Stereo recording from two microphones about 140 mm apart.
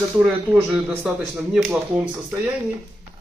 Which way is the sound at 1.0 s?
5° right (ahead or behind).